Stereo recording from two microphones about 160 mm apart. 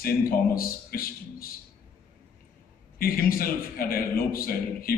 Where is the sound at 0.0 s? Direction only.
65° left (ahead or behind).